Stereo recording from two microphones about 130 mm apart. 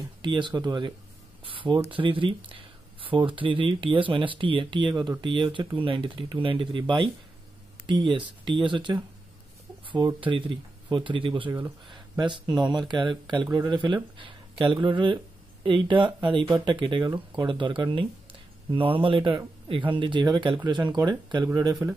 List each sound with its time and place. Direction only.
0.2 s speech: 40° right (ahead or behind)